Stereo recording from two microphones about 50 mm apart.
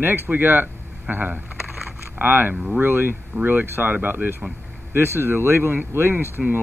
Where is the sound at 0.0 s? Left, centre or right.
Right.